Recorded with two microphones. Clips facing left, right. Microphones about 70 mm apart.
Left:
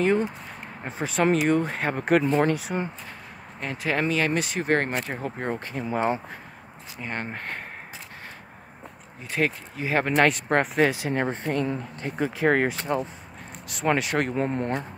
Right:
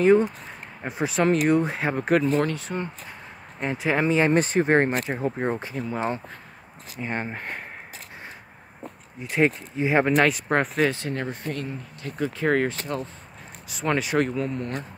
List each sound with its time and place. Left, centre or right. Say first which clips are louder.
0.0 s speech: right 5 dB; centre
2.4 s speech: left 3 dB; centre
3.5 s speech: right 3 dB; centre
4.3 s speech: right 4 dB; right
4.8 s speech: right 4 dB; centre
5.9 s speech: left 4 dB; centre
7.0 s speech: right 2 dB; centre
9.3 s speech: right 4 dB; right
10.0 s speech: right 1 dB; centre
11.1 s speech: left 3 dB; left
12.4 s speech: left 1 dB; centre
13.8 s speech: right 1 dB; centre
14.3 s speech: left 2 dB; left